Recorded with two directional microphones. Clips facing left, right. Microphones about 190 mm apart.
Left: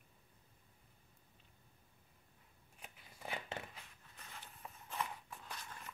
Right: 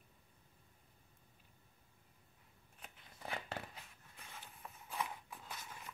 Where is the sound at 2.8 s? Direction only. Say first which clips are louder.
Even; 5° left (ahead or behind).